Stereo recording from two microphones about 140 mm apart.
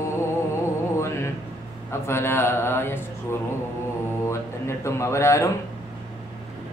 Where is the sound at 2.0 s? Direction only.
15° left (ahead or behind).